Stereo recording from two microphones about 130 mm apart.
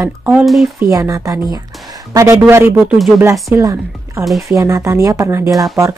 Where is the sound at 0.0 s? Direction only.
15° right (ahead or behind).